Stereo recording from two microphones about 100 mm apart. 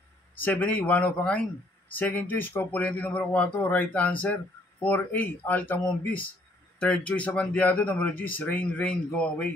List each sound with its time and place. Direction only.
0.4 s speech: 20° left (ahead or behind)